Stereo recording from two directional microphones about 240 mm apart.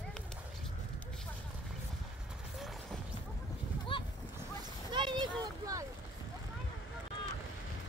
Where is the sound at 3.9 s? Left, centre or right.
Left.